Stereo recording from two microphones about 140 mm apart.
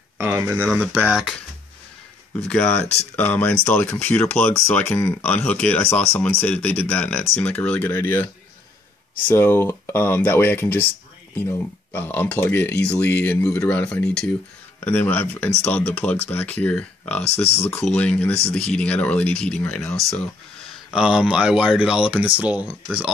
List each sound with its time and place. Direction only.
0.2 s speech: 15° right (ahead or behind)
2.4 s speech: 5° left (ahead or behind)
17.2 s speech: 50° left (ahead or behind)
17.8 s speech: 10° left (ahead or behind)
20.9 s speech: 5° right (ahead or behind)